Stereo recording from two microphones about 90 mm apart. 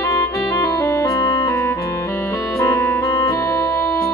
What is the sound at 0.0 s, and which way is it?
Music, 35° left (ahead or behind).